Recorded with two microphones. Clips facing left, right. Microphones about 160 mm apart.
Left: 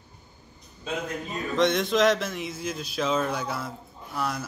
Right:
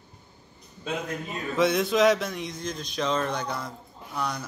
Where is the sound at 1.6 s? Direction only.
Centre (ahead or behind).